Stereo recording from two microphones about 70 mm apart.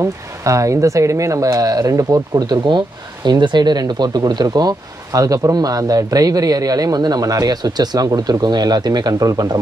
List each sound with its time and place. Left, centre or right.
0.0 s speech: right
3.3 s speech: right
9.3 s speech: right